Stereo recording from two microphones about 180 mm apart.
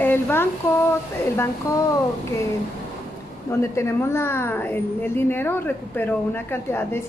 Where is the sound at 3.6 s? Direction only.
15° left (ahead or behind).